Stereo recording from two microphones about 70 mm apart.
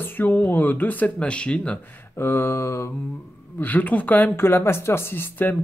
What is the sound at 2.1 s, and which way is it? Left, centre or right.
Mantra, left.